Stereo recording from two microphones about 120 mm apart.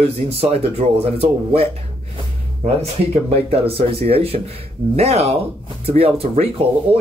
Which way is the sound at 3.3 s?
55° right (ahead or behind).